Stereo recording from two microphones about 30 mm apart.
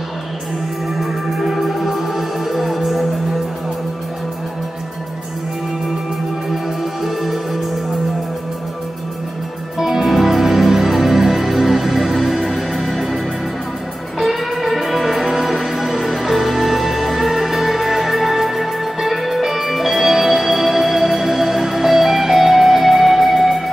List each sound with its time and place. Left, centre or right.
0.9 s music: centre
6.5 s music: centre
9.8 s music: centre
14.2 s music: centre